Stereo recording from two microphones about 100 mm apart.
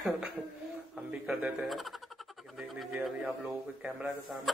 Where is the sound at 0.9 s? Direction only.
5° right (ahead or behind).